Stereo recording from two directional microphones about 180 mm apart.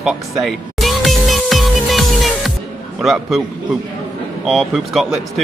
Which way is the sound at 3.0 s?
Centre (ahead or behind).